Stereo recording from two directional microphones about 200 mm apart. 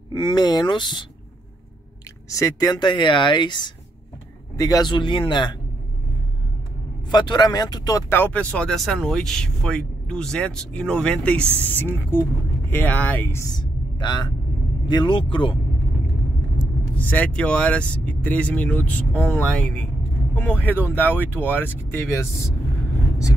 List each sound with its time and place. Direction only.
0.1 s speech: 20° left (ahead or behind)
2.2 s speech: 15° left (ahead or behind)
7.1 s speech: 20° left (ahead or behind)
17.0 s speech: 5° left (ahead or behind)